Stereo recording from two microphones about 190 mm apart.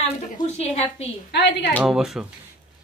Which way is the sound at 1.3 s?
65° left (ahead or behind).